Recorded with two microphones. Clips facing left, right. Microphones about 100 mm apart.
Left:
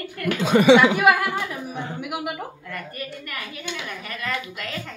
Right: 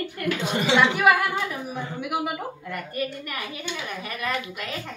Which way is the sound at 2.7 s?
20° right (ahead or behind).